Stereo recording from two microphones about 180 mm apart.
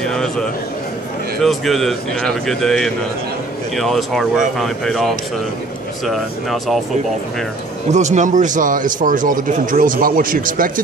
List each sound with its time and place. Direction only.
0.0 s a sound: 5° left (ahead or behind)
1.4 s a man's voice: centre (ahead or behind)
7.9 s a man's voice: 40° right (ahead or behind)